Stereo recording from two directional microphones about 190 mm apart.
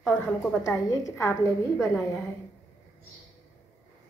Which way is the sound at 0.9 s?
15° left (ahead or behind).